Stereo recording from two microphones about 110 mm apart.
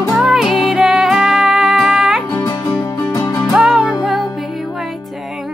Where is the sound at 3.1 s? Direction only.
35° left (ahead or behind).